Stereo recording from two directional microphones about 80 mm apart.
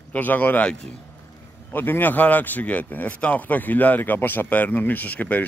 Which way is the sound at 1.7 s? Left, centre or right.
Left.